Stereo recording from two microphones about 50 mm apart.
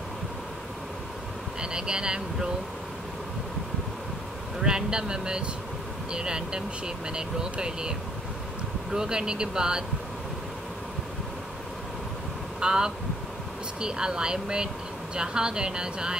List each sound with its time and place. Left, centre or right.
1.6 s speech: centre
4.6 s speech: centre
8.9 s speech: centre
12.5 s speech: centre